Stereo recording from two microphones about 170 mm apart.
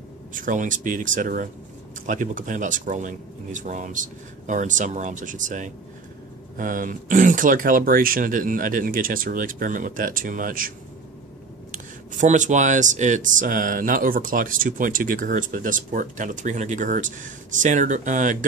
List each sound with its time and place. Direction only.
0.3 s speech: 50° right (ahead or behind)
11.7 s speech: 50° right (ahead or behind)